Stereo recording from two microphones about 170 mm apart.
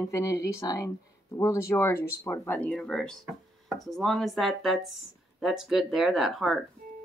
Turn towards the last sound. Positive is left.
turn(degrees=0)  # may be behind; listen again after turning